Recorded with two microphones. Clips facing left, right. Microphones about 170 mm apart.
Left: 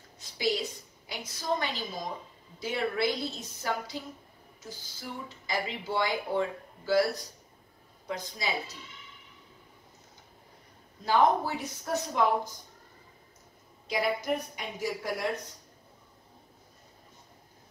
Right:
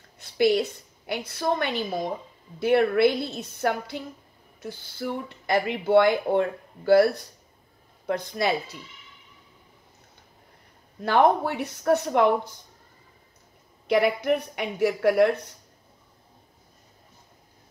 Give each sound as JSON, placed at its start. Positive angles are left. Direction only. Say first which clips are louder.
{"t": 0.2, "sound": "a woman's voice", "louder": "right 9 dB", "side_deg": -60}
{"t": 11.0, "sound": "speech", "louder": "right 4 dB", "side_deg": -65}
{"t": 13.8, "sound": "speech", "louder": "right 8 dB", "side_deg": -65}